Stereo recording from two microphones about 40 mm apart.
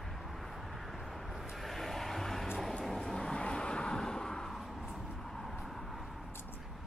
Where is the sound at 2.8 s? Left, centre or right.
Centre.